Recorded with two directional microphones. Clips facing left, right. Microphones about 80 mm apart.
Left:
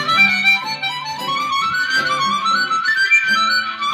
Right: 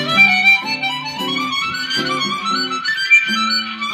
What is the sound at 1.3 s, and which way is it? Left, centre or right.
Music, left.